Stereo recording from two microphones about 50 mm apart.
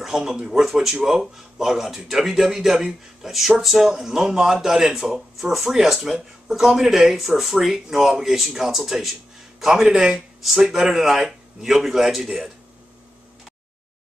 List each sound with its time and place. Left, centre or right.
0.0 s speech: centre